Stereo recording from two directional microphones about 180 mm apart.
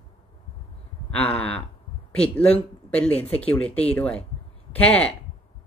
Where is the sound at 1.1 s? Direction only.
5° left (ahead or behind).